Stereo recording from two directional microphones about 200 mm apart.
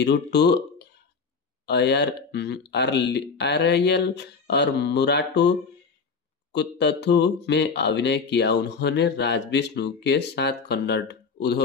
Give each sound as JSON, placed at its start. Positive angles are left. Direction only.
{"t": 0.0, "sound": "speech", "side_deg": 55}